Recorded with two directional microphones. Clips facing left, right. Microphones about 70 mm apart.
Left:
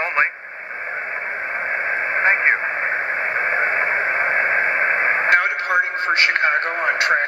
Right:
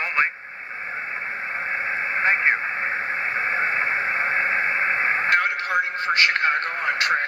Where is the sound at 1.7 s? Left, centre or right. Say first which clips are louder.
Left 4 dB; left.